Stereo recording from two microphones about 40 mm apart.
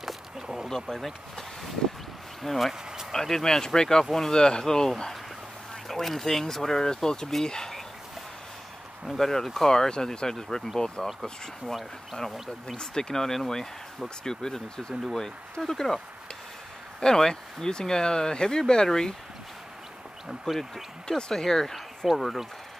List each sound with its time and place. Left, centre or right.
0.0 s a sound: centre
0.7 s speech: centre
4.3 s speech: centre
9.0 s speech: centre
12.2 s speech: centre
17.0 s speech: centre
20.2 s speech: centre
21.2 s speech: centre